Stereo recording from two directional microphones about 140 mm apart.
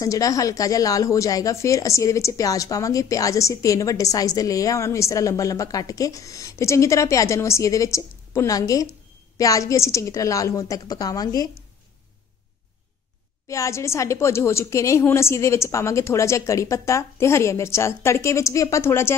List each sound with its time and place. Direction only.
0.0 s speech: 25° left (ahead or behind)
13.5 s speech: 20° left (ahead or behind)